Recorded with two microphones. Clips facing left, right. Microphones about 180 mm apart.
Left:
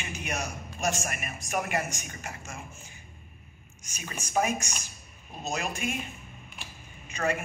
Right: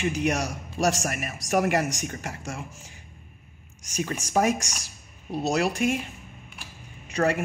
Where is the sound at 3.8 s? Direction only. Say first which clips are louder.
Right 11 dB; 75° right (ahead or behind).